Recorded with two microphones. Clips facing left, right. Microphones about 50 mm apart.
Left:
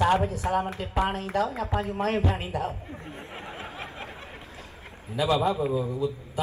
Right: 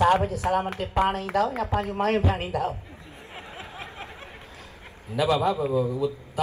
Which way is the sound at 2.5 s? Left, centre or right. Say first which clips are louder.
Right 3 dB; centre.